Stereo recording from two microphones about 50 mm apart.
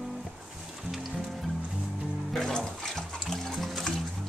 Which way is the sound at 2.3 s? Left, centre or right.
Centre.